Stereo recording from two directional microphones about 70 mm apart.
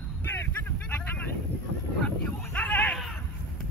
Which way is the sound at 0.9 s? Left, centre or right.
Left.